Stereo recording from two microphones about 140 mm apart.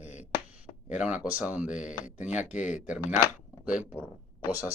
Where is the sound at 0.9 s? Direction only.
5° right (ahead or behind).